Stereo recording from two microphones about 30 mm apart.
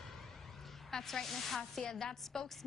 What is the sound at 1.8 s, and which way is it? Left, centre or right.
Speech, left.